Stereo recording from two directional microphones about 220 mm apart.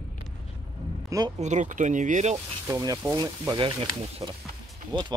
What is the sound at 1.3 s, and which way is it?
Speech, 35° right (ahead or behind).